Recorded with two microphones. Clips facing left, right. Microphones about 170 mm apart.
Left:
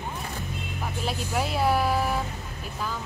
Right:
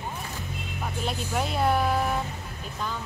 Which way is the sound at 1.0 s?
Centre (ahead or behind).